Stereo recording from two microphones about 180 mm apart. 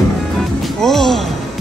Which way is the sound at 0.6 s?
Centre (ahead or behind).